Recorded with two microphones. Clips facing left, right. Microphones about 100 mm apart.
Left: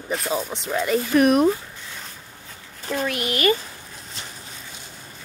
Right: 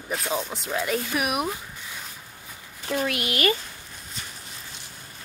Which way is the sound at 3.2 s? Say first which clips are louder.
Left 2 dB; 30° left (ahead or behind).